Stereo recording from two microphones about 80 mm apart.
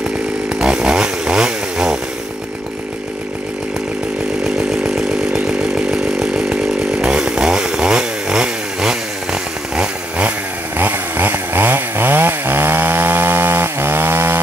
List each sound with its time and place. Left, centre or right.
0.6 s chainsaw: centre
4.6 s chainsaw: centre
10.8 s chainsaw: right